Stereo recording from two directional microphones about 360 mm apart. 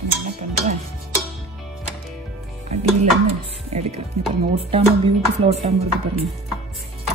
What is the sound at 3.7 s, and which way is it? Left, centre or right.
Music, centre.